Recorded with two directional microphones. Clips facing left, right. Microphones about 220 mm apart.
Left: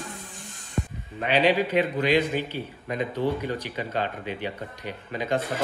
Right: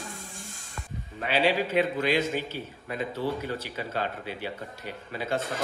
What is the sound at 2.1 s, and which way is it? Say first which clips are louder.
Speech: left 4 dB; 45° right (ahead or behind).